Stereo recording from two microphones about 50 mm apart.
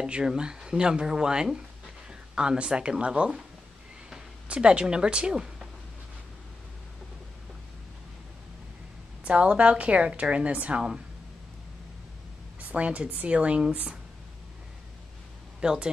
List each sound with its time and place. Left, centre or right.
0.0 s speech: centre
2.0 s a sound: centre
3.1 s speech: centre
4.5 s speech: right
9.2 s a woman's voice: right
12.5 s speech: right
15.6 s speech: centre